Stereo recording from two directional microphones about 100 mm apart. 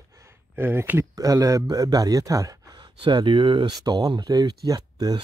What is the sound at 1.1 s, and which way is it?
Speech, 35° right (ahead or behind).